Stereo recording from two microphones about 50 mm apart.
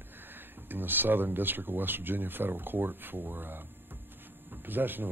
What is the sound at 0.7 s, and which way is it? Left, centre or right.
Speech, right.